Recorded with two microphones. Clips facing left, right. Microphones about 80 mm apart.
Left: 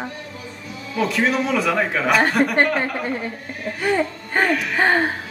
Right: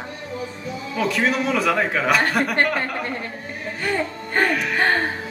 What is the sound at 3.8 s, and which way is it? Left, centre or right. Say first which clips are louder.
Speech: left 4 dB; centre.